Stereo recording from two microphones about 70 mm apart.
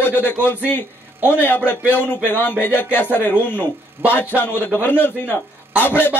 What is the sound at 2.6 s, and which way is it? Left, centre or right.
A man's voice, left.